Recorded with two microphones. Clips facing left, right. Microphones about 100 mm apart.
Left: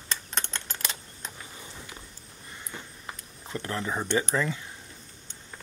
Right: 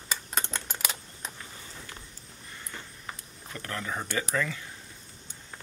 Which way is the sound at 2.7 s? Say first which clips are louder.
Left 1 dB; 20° left (ahead or behind).